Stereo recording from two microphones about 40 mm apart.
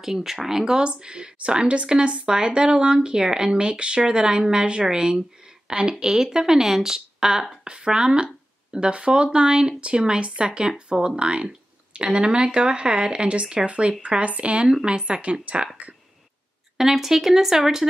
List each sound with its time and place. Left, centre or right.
0.0 s speech: centre; by 15.7 s right
16.7 s speech: centre